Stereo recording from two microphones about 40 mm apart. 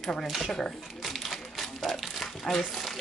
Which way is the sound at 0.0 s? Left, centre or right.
Centre.